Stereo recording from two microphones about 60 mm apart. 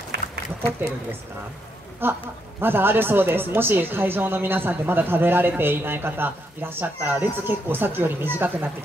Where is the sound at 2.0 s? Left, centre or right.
Right.